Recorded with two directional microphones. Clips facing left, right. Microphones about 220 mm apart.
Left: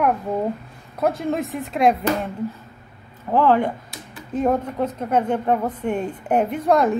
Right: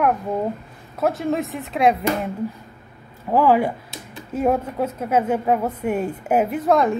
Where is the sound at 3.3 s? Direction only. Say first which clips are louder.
Right 1 dB; 10° right (ahead or behind).